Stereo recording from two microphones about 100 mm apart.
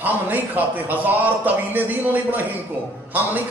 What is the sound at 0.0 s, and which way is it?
Speech, 20° right (ahead or behind).